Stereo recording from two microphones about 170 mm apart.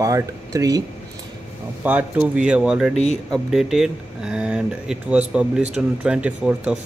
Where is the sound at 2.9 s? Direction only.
40° left (ahead or behind).